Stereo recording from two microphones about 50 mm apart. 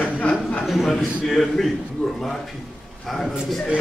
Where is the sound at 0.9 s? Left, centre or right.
Centre.